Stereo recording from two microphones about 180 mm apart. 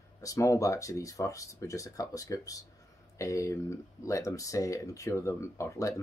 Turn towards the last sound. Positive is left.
turn(degrees=15)  # may be behind; listen again after turning